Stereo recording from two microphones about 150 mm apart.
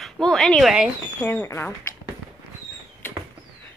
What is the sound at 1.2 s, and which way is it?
Speech, 15° left (ahead or behind).